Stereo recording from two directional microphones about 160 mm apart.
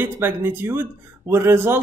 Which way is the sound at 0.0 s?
15° right (ahead or behind).